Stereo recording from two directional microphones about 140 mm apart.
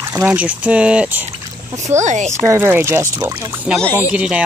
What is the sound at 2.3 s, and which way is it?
Speech, 20° right (ahead or behind).